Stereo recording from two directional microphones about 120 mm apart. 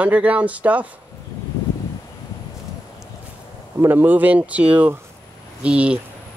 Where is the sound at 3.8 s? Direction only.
15° right (ahead or behind).